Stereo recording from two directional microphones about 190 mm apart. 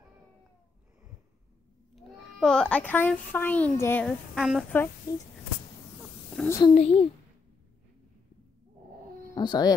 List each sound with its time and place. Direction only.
2.0 s a child's voice: centre (ahead or behind)
4.4 s speech: centre (ahead or behind)
6.3 s a child's voice: 10° left (ahead or behind)
6.6 s a child's voice: 35° left (ahead or behind)
9.3 s speech: 20° left (ahead or behind)